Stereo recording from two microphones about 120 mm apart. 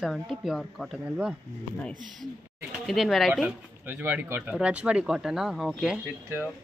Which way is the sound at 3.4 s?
10° right (ahead or behind).